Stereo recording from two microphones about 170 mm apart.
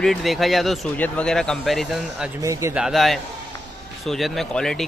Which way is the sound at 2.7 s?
5° right (ahead or behind).